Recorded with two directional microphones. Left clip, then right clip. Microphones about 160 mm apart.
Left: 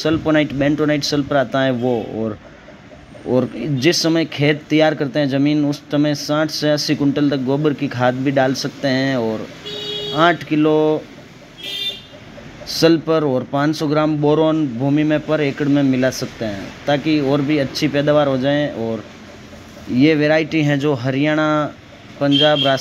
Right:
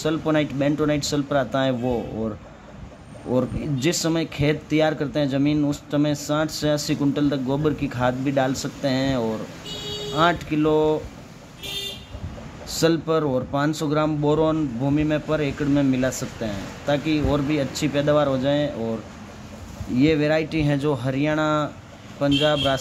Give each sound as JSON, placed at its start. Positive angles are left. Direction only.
{"t": 0.0, "sound": "speech", "side_deg": 5}
{"t": 12.7, "sound": "speech", "side_deg": 5}
{"t": 20.0, "sound": "speech", "side_deg": 10}